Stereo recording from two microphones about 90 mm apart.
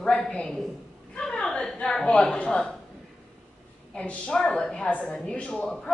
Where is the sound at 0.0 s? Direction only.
10° left (ahead or behind).